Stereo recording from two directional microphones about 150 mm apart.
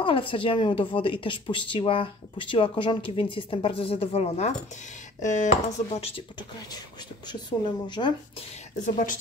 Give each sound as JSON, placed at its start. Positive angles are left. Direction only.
{"t": 0.0, "sound": "speech", "side_deg": 35}
{"t": 5.9, "sound": "speech", "side_deg": 40}
{"t": 7.2, "sound": "a woman's voice", "side_deg": 30}
{"t": 8.8, "sound": "speech", "side_deg": 60}